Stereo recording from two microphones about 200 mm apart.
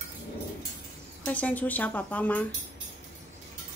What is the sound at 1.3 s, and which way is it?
Speech, 10° left (ahead or behind).